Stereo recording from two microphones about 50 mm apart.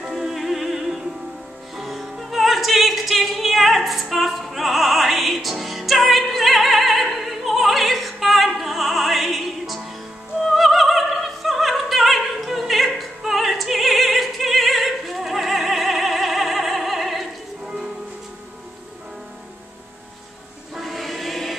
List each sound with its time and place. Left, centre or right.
0.1 s music: centre
10.4 s opera: centre
17.6 s music: centre
20.7 s choir: centre